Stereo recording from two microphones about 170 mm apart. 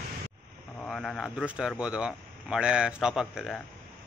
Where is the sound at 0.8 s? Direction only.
Centre (ahead or behind).